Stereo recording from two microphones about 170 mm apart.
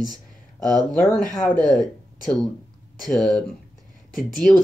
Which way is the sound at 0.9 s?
Centre (ahead or behind).